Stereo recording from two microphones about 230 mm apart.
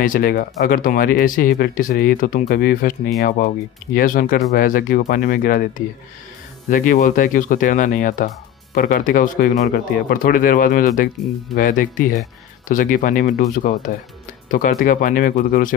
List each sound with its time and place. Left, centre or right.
0.0 s speech: left